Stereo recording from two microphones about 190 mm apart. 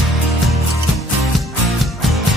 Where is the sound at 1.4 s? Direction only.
Centre (ahead or behind).